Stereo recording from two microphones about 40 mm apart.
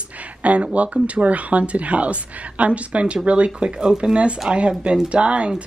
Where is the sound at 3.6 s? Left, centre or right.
Right.